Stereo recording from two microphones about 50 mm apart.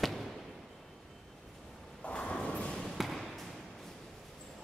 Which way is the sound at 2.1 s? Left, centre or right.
Centre.